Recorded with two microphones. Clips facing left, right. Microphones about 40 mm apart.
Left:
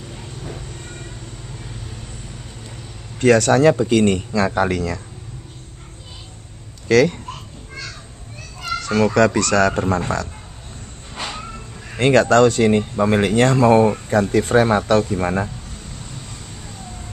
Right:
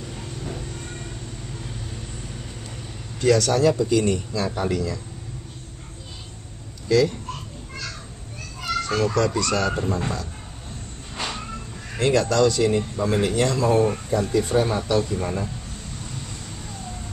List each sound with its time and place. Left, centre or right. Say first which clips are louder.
0.1 s train: even; centre
3.2 s speech: left 5 dB; left
6.9 s speech: left 5 dB; left
8.8 s speech: left 7 dB; left
11.1 s music: left 1 dB; centre
12.0 s speech: left 6 dB; left
14.3 s speech: left 6 dB; left